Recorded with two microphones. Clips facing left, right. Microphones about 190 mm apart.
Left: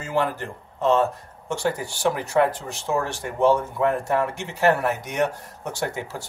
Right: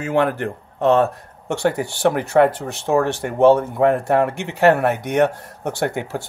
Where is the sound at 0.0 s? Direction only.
65° right (ahead or behind).